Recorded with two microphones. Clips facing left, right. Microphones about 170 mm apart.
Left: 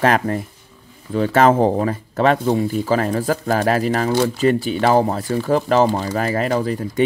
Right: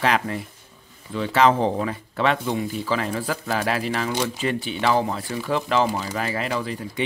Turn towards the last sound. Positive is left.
turn(degrees=40)  # may be behind; listen again after turning